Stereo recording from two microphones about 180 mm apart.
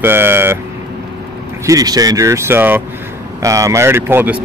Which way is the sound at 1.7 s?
20° right (ahead or behind).